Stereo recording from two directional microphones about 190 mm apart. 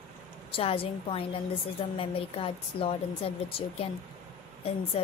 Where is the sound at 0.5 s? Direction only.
30° left (ahead or behind).